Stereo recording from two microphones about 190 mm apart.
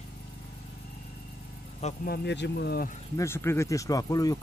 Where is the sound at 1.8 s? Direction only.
50° left (ahead or behind).